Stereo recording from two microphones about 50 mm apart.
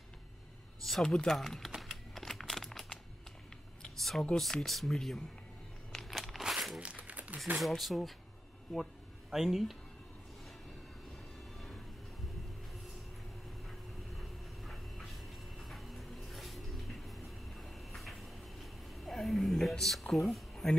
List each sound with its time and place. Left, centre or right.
0.8 s speech: centre
1.8 s typing: centre
3.8 s computer keyboard: centre
4.6 s speech: centre
5.9 s a sound: centre
6.8 s crumpling: right
7.5 s speech: centre
11.5 s vehicle: centre
13.7 s a sound: centre
19.7 s speech: centre